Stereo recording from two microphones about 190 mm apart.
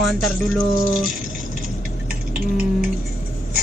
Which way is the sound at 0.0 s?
Centre (ahead or behind).